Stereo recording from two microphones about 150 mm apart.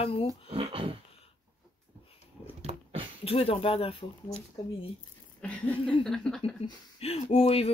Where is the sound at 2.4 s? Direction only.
35° left (ahead or behind).